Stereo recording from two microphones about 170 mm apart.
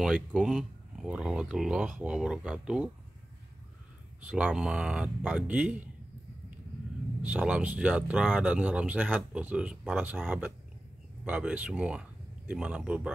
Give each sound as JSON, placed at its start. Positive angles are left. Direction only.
{"t": 0.0, "sound": "speech", "side_deg": -5}
{"t": 4.2, "sound": "speech", "side_deg": -10}
{"t": 7.2, "sound": "speech", "side_deg": -5}